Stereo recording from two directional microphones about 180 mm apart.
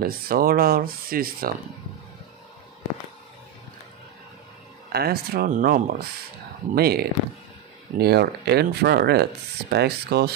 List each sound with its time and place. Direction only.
0.0 s speech: 55° right (ahead or behind)
4.9 s speech: 60° right (ahead or behind)